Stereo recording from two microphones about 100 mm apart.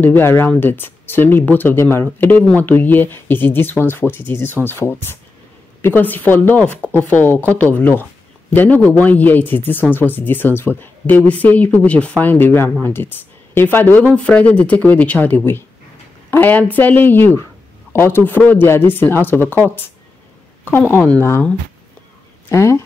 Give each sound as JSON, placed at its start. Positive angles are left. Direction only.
{"t": 0.0, "sound": "speech", "side_deg": 20}
{"t": 20.9, "sound": "speech", "side_deg": 20}
{"t": 22.5, "sound": "speech", "side_deg": 30}